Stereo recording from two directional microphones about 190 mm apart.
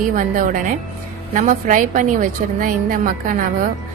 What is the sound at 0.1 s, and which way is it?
A woman's voice, 45° right (ahead or behind).